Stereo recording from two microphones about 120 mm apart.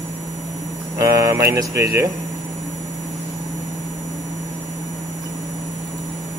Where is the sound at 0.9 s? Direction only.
25° right (ahead or behind).